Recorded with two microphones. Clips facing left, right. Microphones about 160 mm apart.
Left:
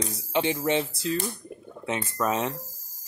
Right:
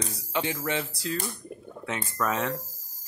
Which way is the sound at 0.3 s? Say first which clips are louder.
Left 5 dB; 25° left (ahead or behind).